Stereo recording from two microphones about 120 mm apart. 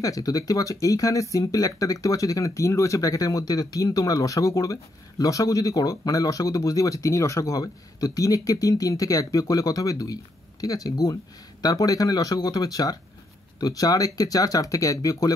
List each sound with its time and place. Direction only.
0.0 s speech: 30° left (ahead or behind)